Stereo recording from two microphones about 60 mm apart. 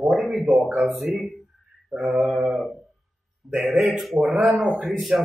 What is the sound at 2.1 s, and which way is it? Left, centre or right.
Speech, centre.